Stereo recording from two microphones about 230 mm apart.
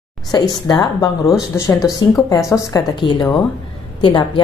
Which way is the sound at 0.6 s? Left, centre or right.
Centre.